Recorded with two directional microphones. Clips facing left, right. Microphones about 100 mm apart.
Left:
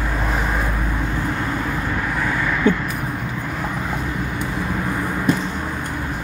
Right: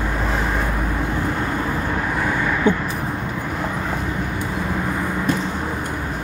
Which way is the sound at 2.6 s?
20° right (ahead or behind).